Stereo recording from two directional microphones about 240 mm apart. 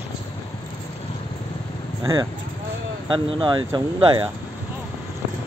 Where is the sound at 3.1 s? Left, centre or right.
Centre.